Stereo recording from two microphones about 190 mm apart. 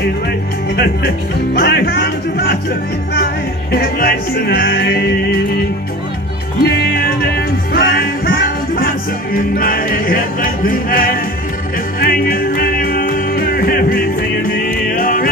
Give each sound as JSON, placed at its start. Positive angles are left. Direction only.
{"t": 0.7, "sound": "speech", "side_deg": 55}
{"t": 3.7, "sound": "speech", "side_deg": 50}
{"t": 6.6, "sound": "music", "side_deg": 55}